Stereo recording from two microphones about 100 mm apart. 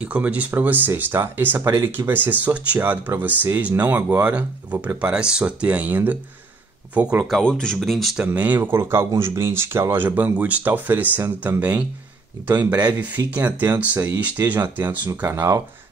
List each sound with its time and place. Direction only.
0.0 s speech: 15° right (ahead or behind)
7.4 s speech: 10° left (ahead or behind)
8.2 s speech: 15° right (ahead or behind)